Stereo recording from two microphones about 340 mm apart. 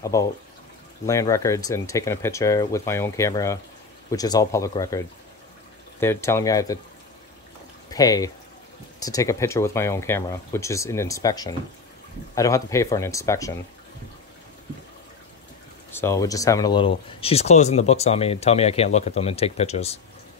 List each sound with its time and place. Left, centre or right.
0.0 s speech: centre
7.9 s speech: centre
16.0 s speech: centre